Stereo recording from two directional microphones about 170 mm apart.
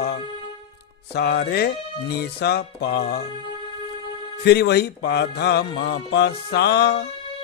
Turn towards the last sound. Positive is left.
turn(degrees=70)  # may be behind; listen again after turning